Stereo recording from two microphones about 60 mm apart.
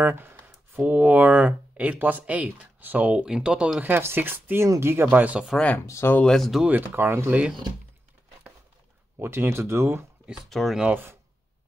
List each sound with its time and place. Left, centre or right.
0.0 s speech: right; by 3.7 s centre
3.8 s speech: right
5.1 s speech: right
5.8 s speech: left
6.2 s speech: centre
6.7 s speech: right
9.2 s speech: right
10.5 s speech: centre